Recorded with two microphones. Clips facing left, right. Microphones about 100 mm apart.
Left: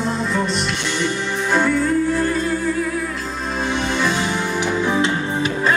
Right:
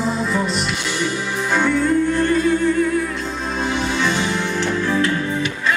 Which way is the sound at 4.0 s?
5° left (ahead or behind).